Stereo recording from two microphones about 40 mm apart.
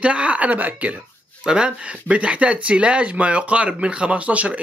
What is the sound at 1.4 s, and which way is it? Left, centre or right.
Speech, centre.